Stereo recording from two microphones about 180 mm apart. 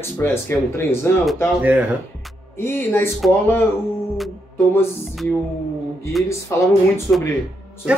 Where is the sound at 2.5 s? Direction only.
10° left (ahead or behind).